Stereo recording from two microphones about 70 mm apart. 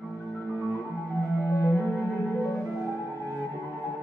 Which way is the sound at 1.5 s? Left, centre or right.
Left.